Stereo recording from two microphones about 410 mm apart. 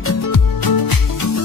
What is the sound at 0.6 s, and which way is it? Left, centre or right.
Music, left.